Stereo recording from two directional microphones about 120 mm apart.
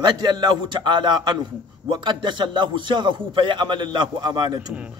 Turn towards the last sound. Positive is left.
turn(degrees=-35)  # may be behind; listen again after turning